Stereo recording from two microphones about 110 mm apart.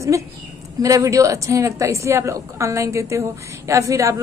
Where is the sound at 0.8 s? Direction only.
30° right (ahead or behind).